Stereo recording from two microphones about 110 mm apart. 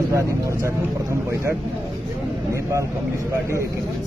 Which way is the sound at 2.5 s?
25° right (ahead or behind).